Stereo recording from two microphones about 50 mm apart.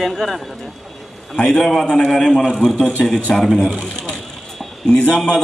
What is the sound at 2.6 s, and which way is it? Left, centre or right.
Speech, centre.